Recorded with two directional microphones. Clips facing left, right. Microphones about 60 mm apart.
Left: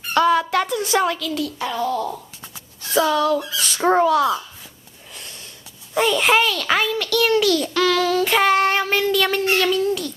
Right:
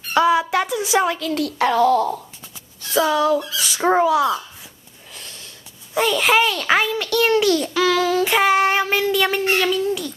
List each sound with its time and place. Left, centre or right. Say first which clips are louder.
0.1 s a sound: even; centre
1.3 s a child's voice: right 6 dB; right
2.9 s a child's voice: right 1 dB; centre
5.9 s a child's voice: even; centre
6.4 s a child's voice: right 2 dB; right
7.7 s child singing: even; centre
8.3 s child singing: even; centre
9.5 s a child's voice: even; centre